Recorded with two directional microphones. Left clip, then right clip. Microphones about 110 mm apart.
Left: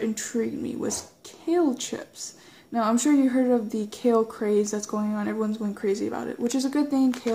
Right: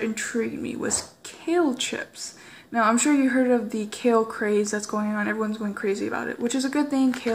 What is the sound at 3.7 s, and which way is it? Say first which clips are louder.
Speech: right 1 dB; 45° left (ahead or behind).